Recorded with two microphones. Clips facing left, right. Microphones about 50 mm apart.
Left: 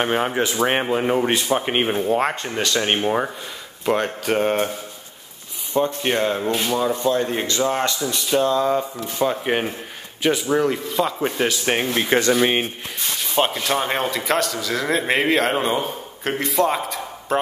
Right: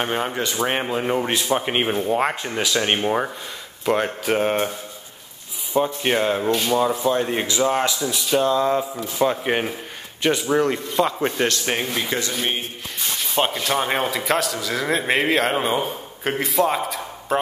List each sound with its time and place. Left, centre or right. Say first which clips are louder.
0.0 s a man's voice: left 3 dB; centre
6.0 s a man's voice: right 1 dB; centre
6.5 s speech: right 2 dB; centre
6.8 s a man's voice: even; centre
11.9 s speech: left 5 dB; left
13.3 s a man's voice: left 1 dB; centre